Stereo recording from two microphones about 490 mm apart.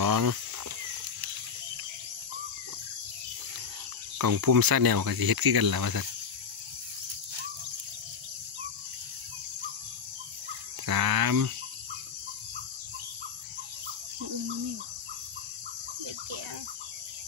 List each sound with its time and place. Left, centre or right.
0.0 s a sound: right
4.2 s speech: right
10.9 s cricket: right